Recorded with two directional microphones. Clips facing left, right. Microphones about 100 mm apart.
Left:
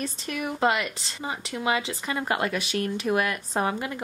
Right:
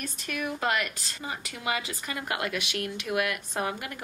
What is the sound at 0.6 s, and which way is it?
Speech, 25° left (ahead or behind).